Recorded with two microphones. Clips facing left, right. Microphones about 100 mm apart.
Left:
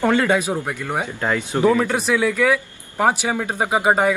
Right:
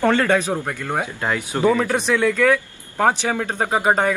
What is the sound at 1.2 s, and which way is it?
Speech, 10° right (ahead or behind).